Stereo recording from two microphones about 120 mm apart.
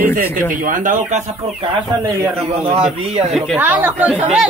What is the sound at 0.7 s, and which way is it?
Speech, 90° right.